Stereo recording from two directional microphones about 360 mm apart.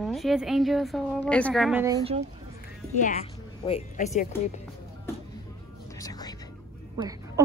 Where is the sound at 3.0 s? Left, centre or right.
Centre.